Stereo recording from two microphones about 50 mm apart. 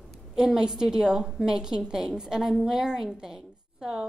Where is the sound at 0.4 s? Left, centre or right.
Centre.